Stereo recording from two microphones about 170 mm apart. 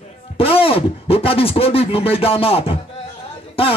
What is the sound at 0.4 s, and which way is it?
Speech, 35° left (ahead or behind).